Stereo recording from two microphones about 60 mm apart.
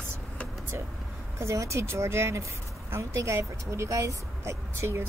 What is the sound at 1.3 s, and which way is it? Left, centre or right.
Speech, right.